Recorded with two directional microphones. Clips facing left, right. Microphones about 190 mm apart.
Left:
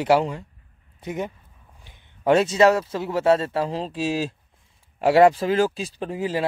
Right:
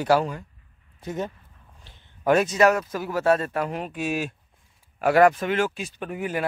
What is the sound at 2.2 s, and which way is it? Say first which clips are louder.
Speech: left 2 dB; 25° left (ahead or behind).